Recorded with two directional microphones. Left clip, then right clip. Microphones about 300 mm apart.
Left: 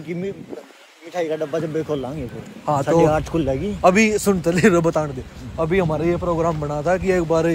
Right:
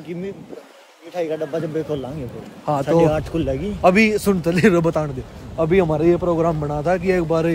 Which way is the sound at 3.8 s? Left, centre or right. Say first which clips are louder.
Right 1 dB; centre.